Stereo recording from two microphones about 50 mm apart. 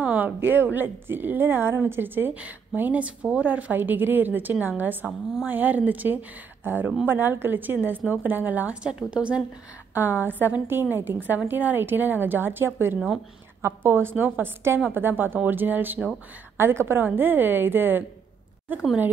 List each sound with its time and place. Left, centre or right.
0.0 s a sound: right
0.4 s a woman's voice: right
2.3 s a woman's voice: right
5.0 s speech: right
5.5 s a woman's voice: right
8.8 s speech: right
9.9 s a woman's voice: right
16.5 s a woman's voice: right